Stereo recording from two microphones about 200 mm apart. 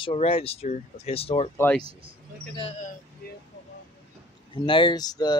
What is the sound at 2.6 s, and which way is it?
Speech, 35° left (ahead or behind).